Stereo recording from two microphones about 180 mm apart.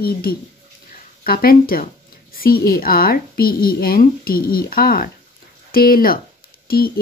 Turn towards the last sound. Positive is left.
turn(degrees=55)  # may be behind; listen again after turning